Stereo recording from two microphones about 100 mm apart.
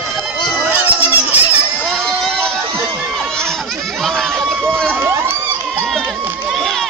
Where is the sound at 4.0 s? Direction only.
5° left (ahead or behind).